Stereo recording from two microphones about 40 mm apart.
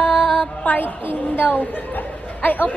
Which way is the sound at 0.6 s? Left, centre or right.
Left.